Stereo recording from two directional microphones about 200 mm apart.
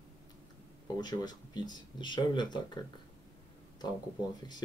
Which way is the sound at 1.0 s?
20° left (ahead or behind).